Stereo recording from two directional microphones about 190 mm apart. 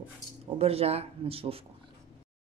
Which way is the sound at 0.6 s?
30° right (ahead or behind).